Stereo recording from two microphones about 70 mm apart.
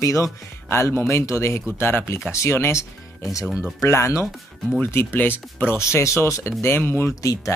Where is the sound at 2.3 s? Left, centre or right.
Left.